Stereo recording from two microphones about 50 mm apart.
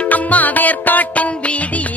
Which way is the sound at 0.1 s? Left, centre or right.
Left.